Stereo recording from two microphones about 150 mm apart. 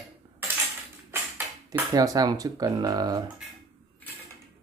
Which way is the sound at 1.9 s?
25° right (ahead or behind).